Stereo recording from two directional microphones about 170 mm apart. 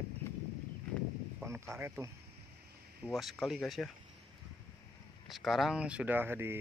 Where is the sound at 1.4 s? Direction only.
15° right (ahead or behind).